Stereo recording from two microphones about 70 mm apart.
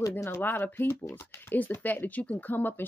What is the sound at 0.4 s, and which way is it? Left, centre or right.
Speech, left.